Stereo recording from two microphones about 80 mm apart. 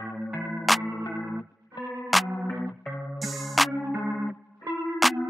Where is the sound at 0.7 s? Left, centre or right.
Centre.